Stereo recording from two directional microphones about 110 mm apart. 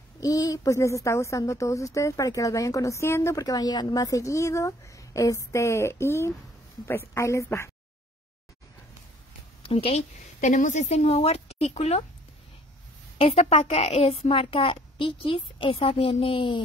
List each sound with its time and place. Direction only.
0.2 s speech: 30° left (ahead or behind)
9.6 s speech: 55° left (ahead or behind)
10.7 s speech: 85° left
13.2 s a woman's voice: 70° left (ahead or behind); by 16.6 s 50° left (ahead or behind)